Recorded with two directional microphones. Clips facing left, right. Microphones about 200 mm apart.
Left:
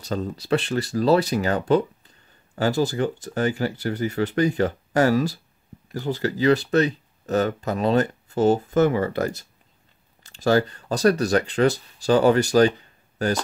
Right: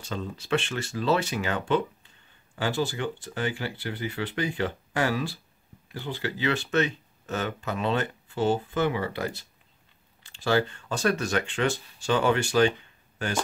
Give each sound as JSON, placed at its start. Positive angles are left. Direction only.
{"t": 0.0, "sound": "speech", "side_deg": 40}